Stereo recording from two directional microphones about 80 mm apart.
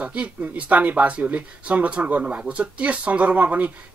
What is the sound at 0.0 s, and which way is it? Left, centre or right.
Speech, centre.